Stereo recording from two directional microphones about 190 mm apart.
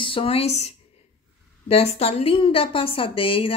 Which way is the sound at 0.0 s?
30° left (ahead or behind).